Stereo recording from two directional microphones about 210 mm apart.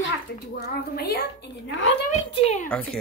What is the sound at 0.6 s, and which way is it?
A woman's voice, 50° left (ahead or behind).